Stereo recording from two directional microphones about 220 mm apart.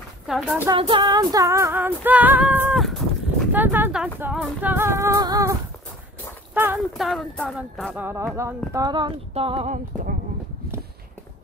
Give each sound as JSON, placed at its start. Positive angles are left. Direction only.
{"t": 0.3, "sound": "speech", "side_deg": -5}
{"t": 0.7, "sound": "female singing", "side_deg": -20}
{"t": 6.5, "sound": "speech", "side_deg": -10}